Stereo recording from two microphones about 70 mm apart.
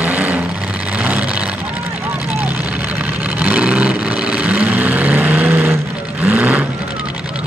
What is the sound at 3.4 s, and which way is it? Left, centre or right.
Vehicle, centre.